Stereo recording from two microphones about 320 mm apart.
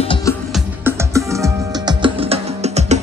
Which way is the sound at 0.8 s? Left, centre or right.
Centre.